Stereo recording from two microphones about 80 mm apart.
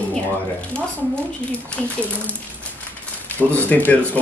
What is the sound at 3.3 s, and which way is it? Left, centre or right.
Speech, left.